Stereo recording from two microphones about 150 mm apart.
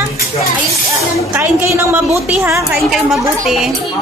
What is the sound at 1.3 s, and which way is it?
A woman's voice, 15° right (ahead or behind).